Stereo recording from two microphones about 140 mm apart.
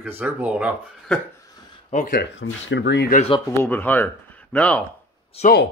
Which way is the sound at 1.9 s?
70° left (ahead or behind).